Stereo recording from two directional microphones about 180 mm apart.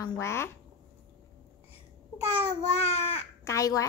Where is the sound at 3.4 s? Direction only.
15° left (ahead or behind).